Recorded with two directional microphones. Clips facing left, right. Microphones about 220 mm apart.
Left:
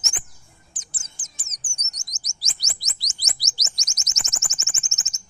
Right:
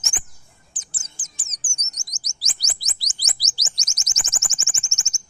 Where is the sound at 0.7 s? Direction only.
30° right (ahead or behind).